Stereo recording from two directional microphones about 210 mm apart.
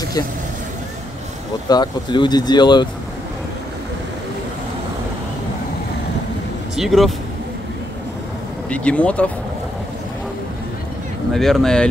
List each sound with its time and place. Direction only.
1.7 s speech: 20° left (ahead or behind)
6.8 s speech: centre (ahead or behind)
8.6 s speech: 5° left (ahead or behind)
11.3 s speech: centre (ahead or behind)